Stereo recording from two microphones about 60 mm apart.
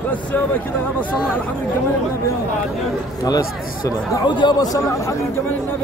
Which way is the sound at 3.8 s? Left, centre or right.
Left.